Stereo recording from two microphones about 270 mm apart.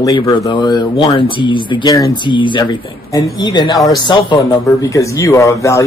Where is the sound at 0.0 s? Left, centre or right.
Centre.